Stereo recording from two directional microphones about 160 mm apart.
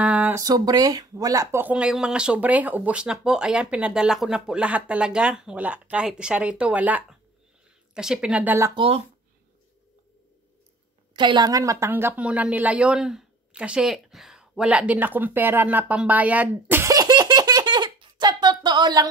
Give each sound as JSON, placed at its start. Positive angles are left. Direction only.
{"t": 0.0, "sound": "a sound", "side_deg": -10}
{"t": 0.4, "sound": "speech", "side_deg": -25}
{"t": 8.7, "sound": "speech", "side_deg": -35}
{"t": 11.1, "sound": "speech", "side_deg": -25}